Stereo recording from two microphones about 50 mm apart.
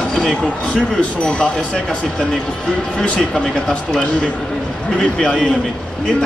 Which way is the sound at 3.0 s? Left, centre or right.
Left.